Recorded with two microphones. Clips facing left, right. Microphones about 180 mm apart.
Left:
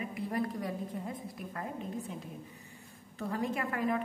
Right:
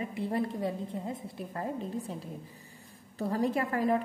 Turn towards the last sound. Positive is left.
turn(degrees=-35)  # may be behind; listen again after turning